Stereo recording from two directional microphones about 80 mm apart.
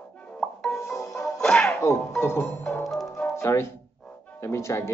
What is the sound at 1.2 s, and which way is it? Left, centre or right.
Music, centre.